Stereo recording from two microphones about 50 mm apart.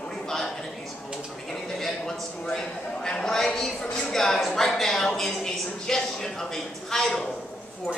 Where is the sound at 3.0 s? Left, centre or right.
Centre.